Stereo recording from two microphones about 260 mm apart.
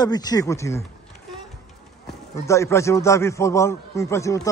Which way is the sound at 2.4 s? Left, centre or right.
Centre.